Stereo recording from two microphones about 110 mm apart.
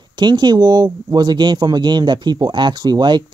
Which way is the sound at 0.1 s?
40° right (ahead or behind).